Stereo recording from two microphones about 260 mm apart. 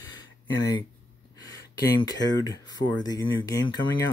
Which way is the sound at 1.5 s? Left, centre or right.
Centre.